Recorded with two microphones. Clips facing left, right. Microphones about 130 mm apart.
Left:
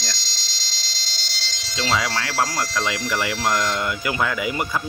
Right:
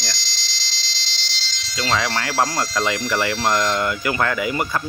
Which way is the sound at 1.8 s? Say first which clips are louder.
Right 1 dB; 10° left (ahead or behind).